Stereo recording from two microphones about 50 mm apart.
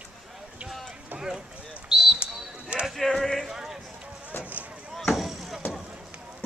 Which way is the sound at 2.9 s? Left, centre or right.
Centre.